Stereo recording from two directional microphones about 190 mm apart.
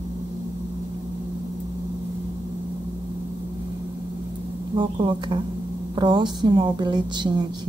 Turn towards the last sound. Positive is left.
turn(degrees=-25)  # may be behind; listen again after turning